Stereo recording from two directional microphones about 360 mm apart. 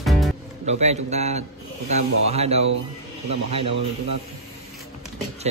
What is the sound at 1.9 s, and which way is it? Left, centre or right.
Snake, centre.